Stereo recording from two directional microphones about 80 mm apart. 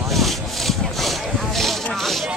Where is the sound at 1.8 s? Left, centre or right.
Centre.